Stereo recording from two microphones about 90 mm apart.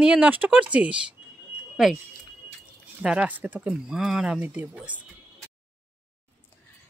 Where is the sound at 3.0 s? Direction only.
15° right (ahead or behind).